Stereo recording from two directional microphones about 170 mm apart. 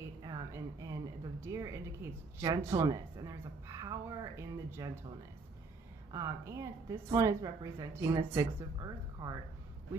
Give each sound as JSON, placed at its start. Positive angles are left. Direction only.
{"t": 0.2, "sound": "a woman's voice", "side_deg": -20}
{"t": 6.1, "sound": "speech", "side_deg": -20}